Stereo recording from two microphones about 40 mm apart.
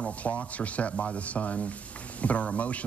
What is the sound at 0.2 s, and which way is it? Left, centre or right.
Speech, left.